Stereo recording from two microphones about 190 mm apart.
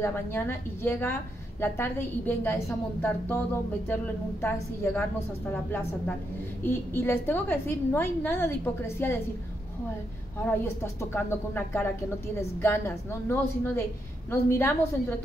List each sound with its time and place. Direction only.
0.0 s a woman's voice: 10° left (ahead or behind)
10.4 s a woman's voice: 10° left (ahead or behind)